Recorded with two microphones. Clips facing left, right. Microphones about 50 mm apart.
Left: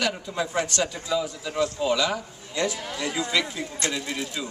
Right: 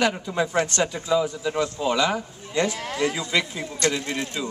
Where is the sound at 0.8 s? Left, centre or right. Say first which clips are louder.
Right 4 dB; centre.